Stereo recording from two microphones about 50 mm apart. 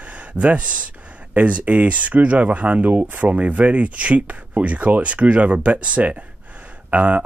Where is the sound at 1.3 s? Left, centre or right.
Right.